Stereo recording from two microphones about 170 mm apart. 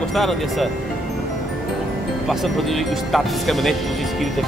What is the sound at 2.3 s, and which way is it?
Speech, centre (ahead or behind).